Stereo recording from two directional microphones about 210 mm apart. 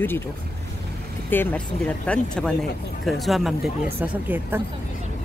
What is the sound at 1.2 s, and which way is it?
Speech, 5° left (ahead or behind).